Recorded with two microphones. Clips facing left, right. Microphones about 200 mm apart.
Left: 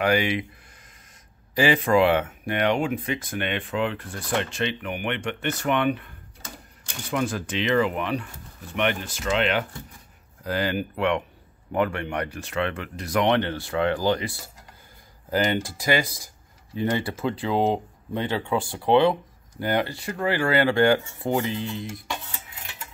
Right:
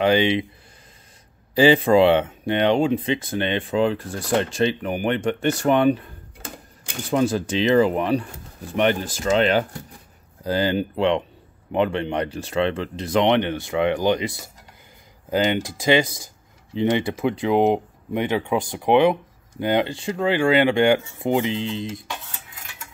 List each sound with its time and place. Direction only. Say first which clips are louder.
0.0 s speech: right 4 dB; 25° right (ahead or behind)
1.5 s speech: right 5 dB; 30° right (ahead or behind)
7.1 s speech: right 6 dB; 30° right (ahead or behind)